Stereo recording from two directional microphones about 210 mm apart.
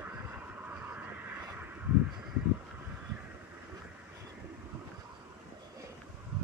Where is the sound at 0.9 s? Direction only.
10° right (ahead or behind).